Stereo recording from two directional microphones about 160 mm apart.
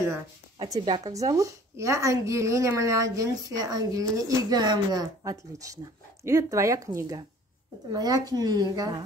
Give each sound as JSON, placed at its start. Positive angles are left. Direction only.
{"t": 0.6, "sound": "a woman's voice", "side_deg": -25}